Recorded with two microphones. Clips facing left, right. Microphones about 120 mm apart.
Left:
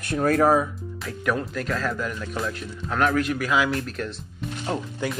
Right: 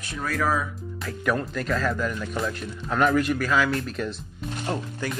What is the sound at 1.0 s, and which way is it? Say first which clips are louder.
Speech: even; centre (ahead or behind).